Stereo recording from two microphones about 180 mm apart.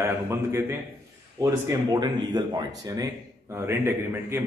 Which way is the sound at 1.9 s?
25° right (ahead or behind).